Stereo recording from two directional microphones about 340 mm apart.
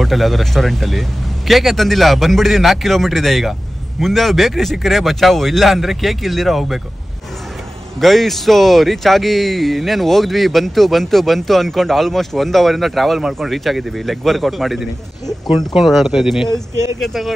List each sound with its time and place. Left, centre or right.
0.0 s speech: centre
8.0 s speech: centre